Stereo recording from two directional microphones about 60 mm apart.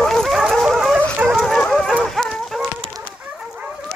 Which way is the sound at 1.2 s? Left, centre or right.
Centre.